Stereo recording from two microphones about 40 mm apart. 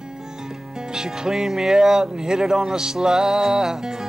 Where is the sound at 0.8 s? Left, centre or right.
Centre.